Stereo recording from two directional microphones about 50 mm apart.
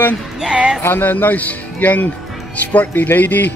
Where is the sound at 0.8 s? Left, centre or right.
Left.